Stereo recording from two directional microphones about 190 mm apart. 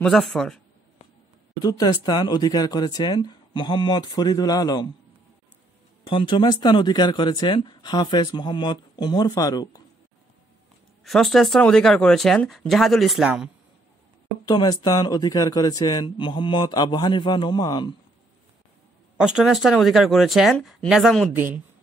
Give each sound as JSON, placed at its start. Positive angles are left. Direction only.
{"t": 0.0, "sound": "speech", "side_deg": 0}
{"t": 1.6, "sound": "speech", "side_deg": 20}
{"t": 6.0, "sound": "speech", "side_deg": 25}
{"t": 11.1, "sound": "speech", "side_deg": 0}
{"t": 14.4, "sound": "speech", "side_deg": 20}
{"t": 19.1, "sound": "speech", "side_deg": -5}